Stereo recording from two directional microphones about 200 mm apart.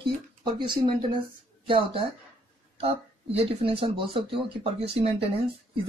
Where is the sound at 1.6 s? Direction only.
25° right (ahead or behind).